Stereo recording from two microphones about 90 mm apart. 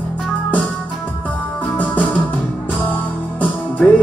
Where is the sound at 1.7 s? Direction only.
15° left (ahead or behind).